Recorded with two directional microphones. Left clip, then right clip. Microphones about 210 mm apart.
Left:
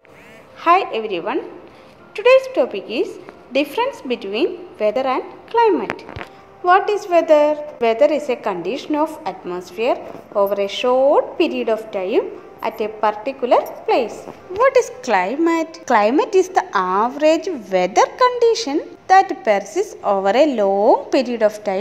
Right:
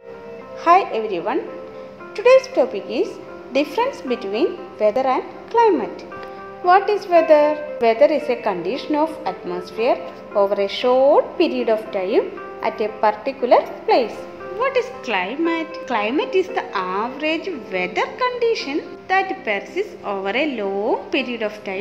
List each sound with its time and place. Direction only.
0.7 s a woman's voice: 10° left (ahead or behind)
14.6 s a woman's voice: 35° left (ahead or behind)